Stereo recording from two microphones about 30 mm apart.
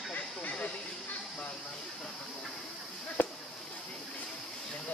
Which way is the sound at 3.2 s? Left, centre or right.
Left.